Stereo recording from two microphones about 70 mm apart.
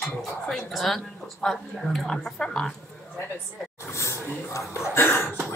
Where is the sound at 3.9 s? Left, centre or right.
Left.